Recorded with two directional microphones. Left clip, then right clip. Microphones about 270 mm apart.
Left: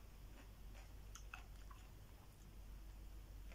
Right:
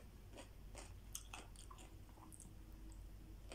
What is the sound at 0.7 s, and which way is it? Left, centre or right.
Chewing, right.